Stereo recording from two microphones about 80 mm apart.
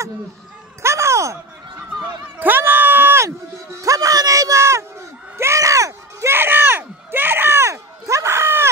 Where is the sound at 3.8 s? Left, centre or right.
Right.